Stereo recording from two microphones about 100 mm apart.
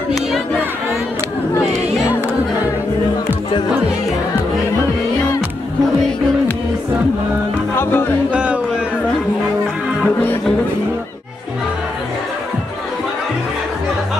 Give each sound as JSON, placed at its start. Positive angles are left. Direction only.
{"t": 7.7, "sound": "music", "side_deg": 25}
{"t": 8.3, "sound": "a sound", "side_deg": -10}
{"t": 10.0, "sound": "music", "side_deg": 20}